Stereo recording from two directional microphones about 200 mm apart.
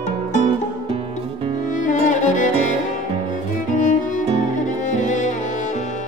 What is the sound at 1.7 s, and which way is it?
Music, 40° left (ahead or behind).